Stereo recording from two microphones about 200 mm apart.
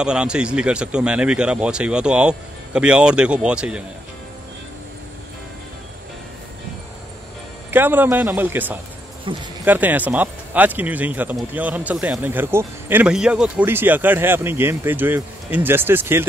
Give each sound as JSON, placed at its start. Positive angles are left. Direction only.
{"t": 0.0, "sound": "speech", "side_deg": -5}
{"t": 7.7, "sound": "speech", "side_deg": -10}
{"t": 9.3, "sound": "speech", "side_deg": -25}
{"t": 9.7, "sound": "speech", "side_deg": -10}